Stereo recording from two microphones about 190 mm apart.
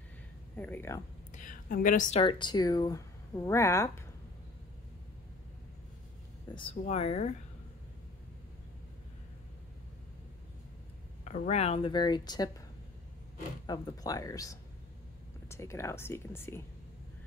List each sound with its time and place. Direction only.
0.6 s speech: 10° left (ahead or behind)
1.3 s a sound: 45° left (ahead or behind)
2.2 s speech: 25° left (ahead or behind)
6.5 s speech: 25° left (ahead or behind)
11.2 s speech: 35° left (ahead or behind); by 12.6 s 20° left (ahead or behind)
13.7 s speech: 20° left (ahead or behind)